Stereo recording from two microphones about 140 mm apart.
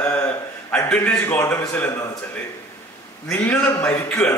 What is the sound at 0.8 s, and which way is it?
Speech, 10° left (ahead or behind).